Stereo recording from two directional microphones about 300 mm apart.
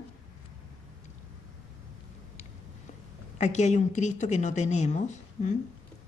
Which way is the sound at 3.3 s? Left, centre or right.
Left.